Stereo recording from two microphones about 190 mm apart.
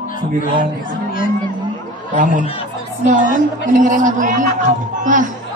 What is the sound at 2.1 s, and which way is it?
A woman's voice, 40° right (ahead or behind).